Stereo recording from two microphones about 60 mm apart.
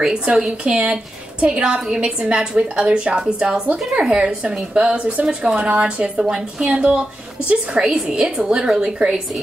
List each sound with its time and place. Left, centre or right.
0.0 s a woman's voice: centre